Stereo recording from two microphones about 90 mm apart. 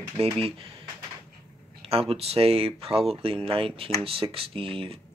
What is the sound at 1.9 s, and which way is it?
Speech, 90° right.